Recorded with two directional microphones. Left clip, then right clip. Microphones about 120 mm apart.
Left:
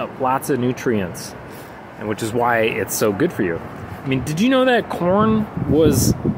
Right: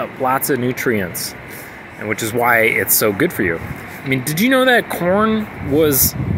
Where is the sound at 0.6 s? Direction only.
5° left (ahead or behind).